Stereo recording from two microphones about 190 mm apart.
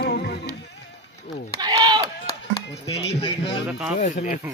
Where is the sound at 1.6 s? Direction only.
20° right (ahead or behind).